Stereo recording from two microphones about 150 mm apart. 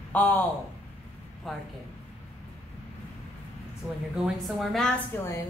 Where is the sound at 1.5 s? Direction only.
Centre (ahead or behind).